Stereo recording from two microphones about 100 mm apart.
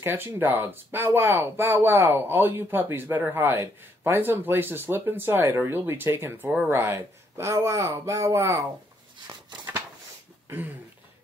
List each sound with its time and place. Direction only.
0.0 s speech: 20° right (ahead or behind)
9.3 s a sound: 45° right (ahead or behind)
10.5 s speech: 20° right (ahead or behind)